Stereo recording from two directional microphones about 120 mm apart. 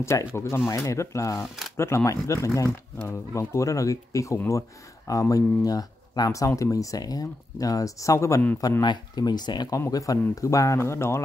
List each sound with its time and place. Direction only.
0.0 s speech: 25° left (ahead or behind)